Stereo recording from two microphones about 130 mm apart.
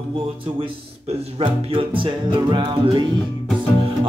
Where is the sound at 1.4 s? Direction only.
40° right (ahead or behind).